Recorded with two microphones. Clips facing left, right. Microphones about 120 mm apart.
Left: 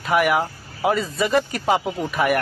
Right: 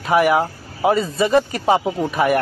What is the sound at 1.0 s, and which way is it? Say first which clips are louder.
Speech: right 4 dB; 35° right (ahead or behind).